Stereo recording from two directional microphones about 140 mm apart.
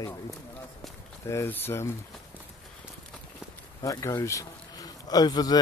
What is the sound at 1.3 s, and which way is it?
Speech, 15° left (ahead or behind).